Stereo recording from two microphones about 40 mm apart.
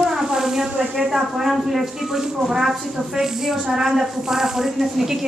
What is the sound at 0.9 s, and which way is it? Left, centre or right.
Speech, centre.